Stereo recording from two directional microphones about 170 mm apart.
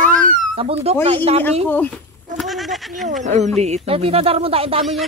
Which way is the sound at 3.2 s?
45° right (ahead or behind).